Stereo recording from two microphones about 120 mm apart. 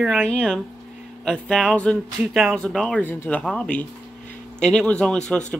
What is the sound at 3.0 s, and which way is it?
Speech, 15° left (ahead or behind).